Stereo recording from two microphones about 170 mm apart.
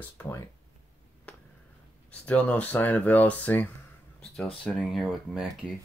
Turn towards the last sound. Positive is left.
turn(degrees=-5)  # may be behind; listen again after turning